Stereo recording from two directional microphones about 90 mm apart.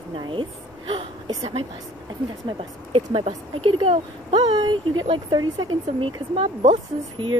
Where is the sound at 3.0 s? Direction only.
90° right; by 5.7 s 55° right (ahead or behind).